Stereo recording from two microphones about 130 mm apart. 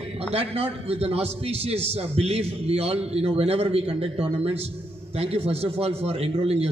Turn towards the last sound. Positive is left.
turn(degrees=-50)  # may be behind; listen again after turning